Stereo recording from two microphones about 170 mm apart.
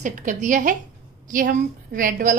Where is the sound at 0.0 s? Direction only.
45° right (ahead or behind).